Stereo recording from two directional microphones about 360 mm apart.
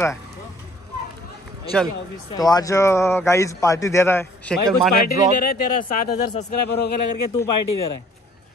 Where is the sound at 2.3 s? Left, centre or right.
Centre.